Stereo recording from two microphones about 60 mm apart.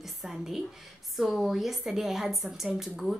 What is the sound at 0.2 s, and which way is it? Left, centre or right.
Speech, centre.